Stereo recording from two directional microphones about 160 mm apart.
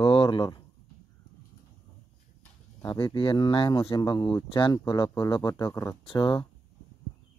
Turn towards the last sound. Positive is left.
turn(degrees=30)  # may be behind; listen again after turning